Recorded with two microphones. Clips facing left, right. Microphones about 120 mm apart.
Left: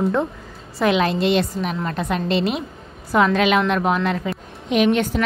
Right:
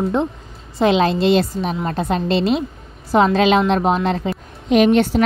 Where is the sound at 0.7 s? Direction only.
30° right (ahead or behind).